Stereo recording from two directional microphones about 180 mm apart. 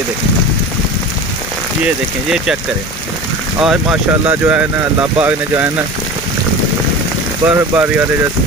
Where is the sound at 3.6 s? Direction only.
5° right (ahead or behind).